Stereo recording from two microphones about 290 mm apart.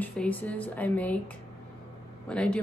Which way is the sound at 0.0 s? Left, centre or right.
Centre.